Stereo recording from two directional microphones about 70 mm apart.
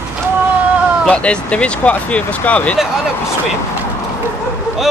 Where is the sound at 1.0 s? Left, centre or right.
Centre.